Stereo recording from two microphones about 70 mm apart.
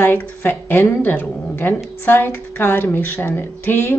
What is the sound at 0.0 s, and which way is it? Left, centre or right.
A woman's voice, left.